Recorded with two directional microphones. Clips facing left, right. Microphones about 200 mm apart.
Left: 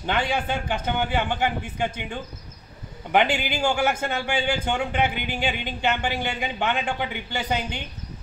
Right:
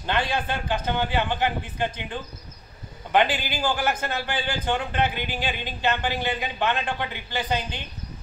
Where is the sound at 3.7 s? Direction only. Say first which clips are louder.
Left 2 dB; 10° left (ahead or behind).